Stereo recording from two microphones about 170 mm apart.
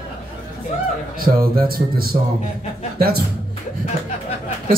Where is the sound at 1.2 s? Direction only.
60° right (ahead or behind).